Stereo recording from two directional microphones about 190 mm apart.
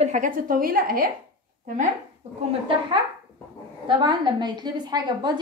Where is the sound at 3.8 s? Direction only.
25° right (ahead or behind).